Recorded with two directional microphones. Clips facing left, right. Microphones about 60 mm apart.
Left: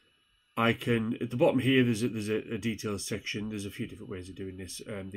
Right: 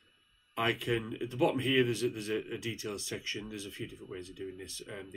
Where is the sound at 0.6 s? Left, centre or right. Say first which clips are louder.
Left 4 dB; left.